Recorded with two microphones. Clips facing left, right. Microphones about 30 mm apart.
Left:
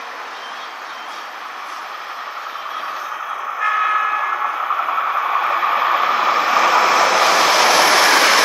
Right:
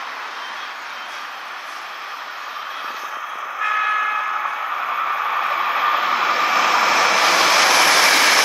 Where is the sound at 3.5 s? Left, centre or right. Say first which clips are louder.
Left 2 dB; centre.